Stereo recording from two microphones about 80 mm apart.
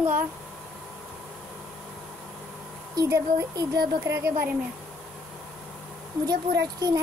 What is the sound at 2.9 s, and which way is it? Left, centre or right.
Speech, right.